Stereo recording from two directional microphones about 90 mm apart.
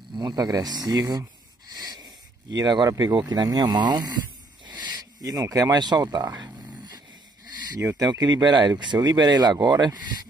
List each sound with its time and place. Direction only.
0.1 s speech: 50° right (ahead or behind)
1.7 s a sound: 45° right (ahead or behind)
2.9 s speech: 45° right (ahead or behind)
8.0 s speech: 45° right (ahead or behind)